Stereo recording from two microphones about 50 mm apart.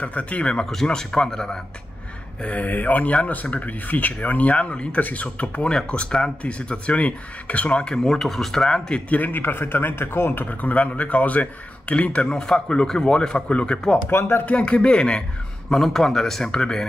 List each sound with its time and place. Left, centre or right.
0.0 s speech: left; by 1.6 s centre
2.4 s a man's voice: left; by 9.0 s centre
9.1 s a man's voice: left
14.1 s speech: left
14.4 s speech: left
15.7 s speech: centre